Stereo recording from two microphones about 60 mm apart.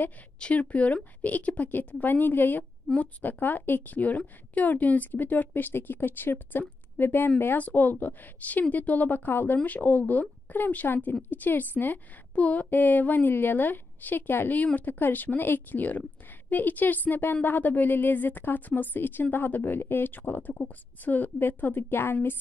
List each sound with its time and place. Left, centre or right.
0.4 s a woman's voice: left